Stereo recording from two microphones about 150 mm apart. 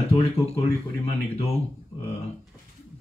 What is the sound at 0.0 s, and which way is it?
Speech, 45° left (ahead or behind).